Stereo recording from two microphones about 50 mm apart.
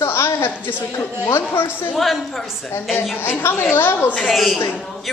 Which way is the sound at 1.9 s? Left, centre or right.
Centre.